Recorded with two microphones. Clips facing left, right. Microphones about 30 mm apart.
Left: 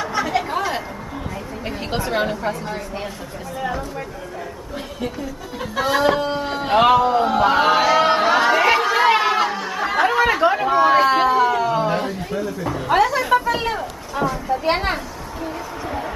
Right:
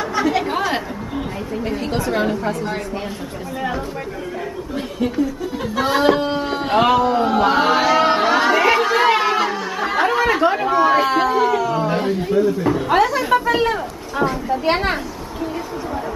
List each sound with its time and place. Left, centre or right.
0.0 s chatter: centre
0.4 s a sound: centre
1.9 s a woman's voice: centre
4.7 s speech: centre
7.1 s a sound: centre
12.3 s speech: centre